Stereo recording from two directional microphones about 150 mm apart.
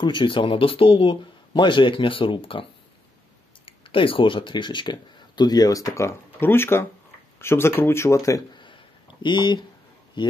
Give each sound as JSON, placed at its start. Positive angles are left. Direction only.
{"t": 0.0, "sound": "a man's voice", "side_deg": 30}
{"t": 3.6, "sound": "a man's voice", "side_deg": 35}